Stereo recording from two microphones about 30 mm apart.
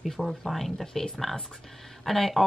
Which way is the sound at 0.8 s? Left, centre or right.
Left.